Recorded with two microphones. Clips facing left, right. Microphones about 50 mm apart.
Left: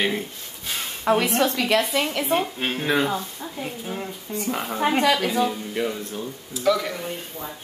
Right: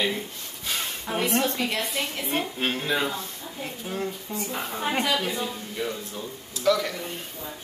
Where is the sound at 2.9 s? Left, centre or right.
Left.